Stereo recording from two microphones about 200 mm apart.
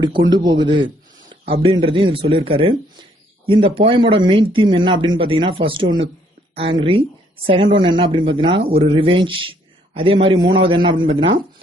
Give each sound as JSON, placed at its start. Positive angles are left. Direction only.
{"t": 0.3, "sound": "a man's voice", "side_deg": -20}